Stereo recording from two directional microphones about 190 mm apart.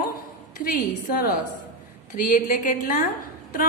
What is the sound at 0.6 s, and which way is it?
A woman's voice, 50° left (ahead or behind).